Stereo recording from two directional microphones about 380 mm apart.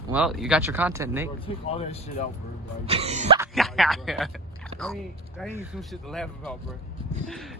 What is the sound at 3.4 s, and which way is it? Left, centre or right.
Speech, centre.